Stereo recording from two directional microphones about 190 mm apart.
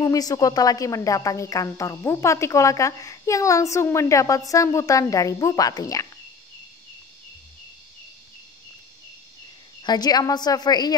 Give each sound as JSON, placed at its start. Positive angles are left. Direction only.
{"t": 0.0, "sound": "speech", "side_deg": 20}
{"t": 9.8, "sound": "a woman's voice", "side_deg": 20}